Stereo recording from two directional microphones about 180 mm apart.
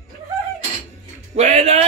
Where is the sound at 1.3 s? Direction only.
35° right (ahead or behind).